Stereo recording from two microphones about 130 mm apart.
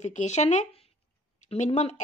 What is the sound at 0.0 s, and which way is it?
Speech, 60° left (ahead or behind).